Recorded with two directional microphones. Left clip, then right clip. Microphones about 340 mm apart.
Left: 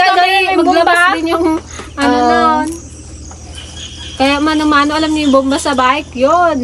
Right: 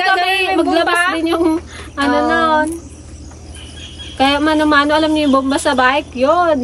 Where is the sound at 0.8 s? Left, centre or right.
Centre.